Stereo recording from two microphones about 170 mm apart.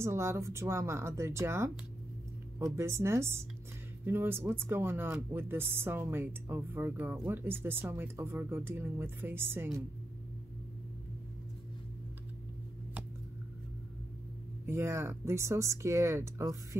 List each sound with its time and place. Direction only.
0.0 s speech: 15° right (ahead or behind)
14.7 s speech: 15° right (ahead or behind)